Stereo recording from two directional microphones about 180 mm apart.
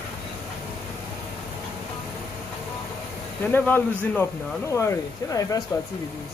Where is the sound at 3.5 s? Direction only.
10° left (ahead or behind).